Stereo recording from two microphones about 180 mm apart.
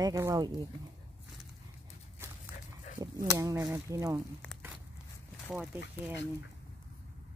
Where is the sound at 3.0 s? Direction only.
20° right (ahead or behind).